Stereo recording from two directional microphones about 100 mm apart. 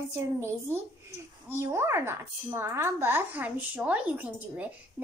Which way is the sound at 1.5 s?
25° right (ahead or behind).